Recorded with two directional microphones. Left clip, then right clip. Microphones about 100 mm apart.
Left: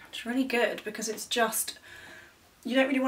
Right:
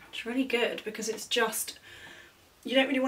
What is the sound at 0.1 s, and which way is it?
Speech, 25° left (ahead or behind).